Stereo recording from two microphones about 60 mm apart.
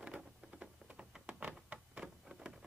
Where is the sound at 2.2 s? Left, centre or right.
Centre.